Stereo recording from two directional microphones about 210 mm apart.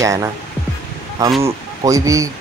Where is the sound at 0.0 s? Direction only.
15° right (ahead or behind).